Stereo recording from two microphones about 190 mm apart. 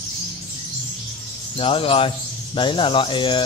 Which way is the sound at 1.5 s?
30° left (ahead or behind).